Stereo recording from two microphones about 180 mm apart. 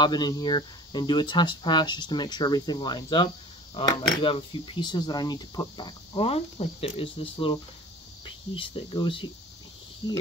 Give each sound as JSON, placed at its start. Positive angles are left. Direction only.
{"t": 0.0, "sound": "speech", "side_deg": 25}
{"t": 8.5, "sound": "speech", "side_deg": 30}